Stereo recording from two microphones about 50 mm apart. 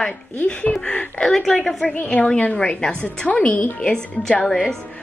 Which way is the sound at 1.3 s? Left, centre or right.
Centre.